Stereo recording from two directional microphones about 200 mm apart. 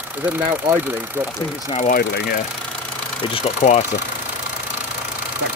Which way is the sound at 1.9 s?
45° left (ahead or behind).